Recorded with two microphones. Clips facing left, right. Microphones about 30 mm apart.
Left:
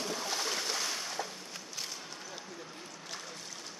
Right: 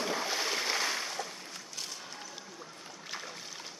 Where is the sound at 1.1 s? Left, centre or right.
Centre.